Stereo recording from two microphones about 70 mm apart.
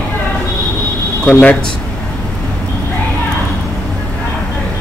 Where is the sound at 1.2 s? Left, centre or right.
Centre.